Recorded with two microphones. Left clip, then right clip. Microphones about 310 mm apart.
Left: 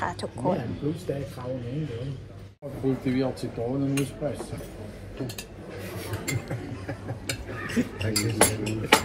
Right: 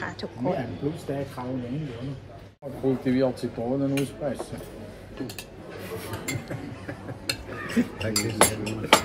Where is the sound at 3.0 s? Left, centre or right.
Right.